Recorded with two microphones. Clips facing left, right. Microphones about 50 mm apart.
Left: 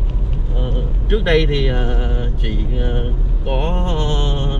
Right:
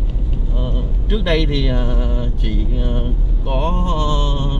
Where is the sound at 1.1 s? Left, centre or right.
Left.